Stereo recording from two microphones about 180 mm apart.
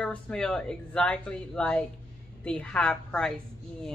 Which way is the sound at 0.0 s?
5° left (ahead or behind).